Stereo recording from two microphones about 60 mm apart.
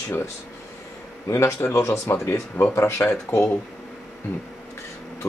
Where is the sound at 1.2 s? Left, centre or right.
Left.